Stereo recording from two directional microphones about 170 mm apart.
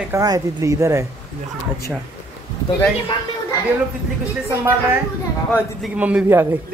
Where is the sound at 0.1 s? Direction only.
20° right (ahead or behind).